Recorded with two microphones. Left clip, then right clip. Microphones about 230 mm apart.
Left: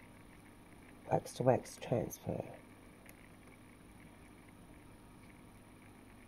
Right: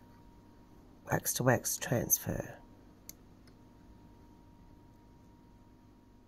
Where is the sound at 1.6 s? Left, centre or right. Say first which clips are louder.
Right 8 dB; centre.